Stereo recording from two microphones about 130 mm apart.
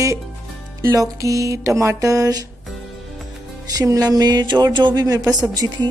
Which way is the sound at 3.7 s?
30° right (ahead or behind).